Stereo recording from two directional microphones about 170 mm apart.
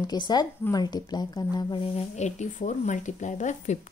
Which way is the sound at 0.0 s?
25° left (ahead or behind).